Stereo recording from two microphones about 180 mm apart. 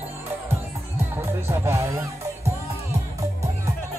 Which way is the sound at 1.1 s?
15° right (ahead or behind).